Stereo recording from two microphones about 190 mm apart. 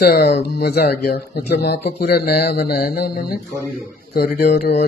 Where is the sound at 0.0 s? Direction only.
55° left (ahead or behind).